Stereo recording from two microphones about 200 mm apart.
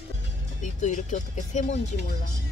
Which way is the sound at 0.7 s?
35° left (ahead or behind).